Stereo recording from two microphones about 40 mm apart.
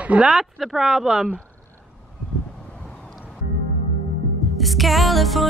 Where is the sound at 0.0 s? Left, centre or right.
Right.